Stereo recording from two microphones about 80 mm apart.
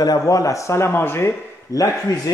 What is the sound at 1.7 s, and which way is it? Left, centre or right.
Speech, left.